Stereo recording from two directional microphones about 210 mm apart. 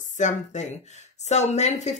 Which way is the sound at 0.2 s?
35° left (ahead or behind).